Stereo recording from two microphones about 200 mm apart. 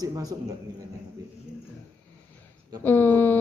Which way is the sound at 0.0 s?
20° right (ahead or behind).